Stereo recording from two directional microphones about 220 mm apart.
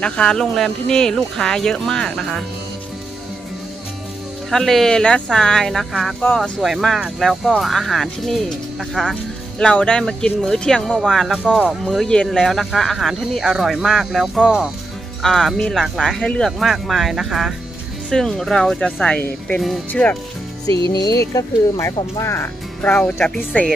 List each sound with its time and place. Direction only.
0.0 s speech: 5° left (ahead or behind)
4.5 s speech: centre (ahead or behind)
20.6 s music: 25° right (ahead or behind)
21.2 s speech: 15° left (ahead or behind)